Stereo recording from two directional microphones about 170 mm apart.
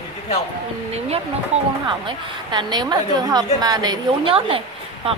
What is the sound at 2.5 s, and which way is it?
A woman's voice, 25° right (ahead or behind).